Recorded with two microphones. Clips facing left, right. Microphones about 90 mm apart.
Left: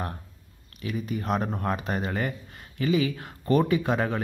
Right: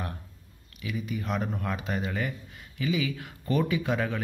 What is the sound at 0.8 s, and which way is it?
Speech, 45° left (ahead or behind).